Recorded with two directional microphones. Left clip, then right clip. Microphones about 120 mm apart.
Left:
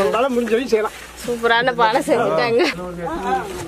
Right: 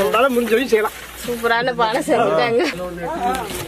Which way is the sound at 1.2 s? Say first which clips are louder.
Left 2 dB; 30° left (ahead or behind).